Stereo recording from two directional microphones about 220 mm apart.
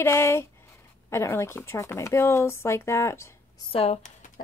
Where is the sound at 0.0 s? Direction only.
10° left (ahead or behind).